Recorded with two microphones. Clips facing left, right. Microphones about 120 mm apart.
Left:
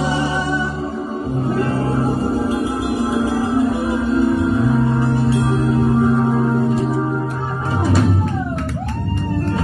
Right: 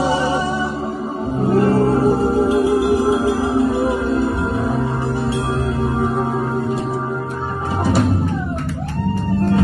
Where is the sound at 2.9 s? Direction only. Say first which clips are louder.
Right 2 dB; 25° right (ahead or behind).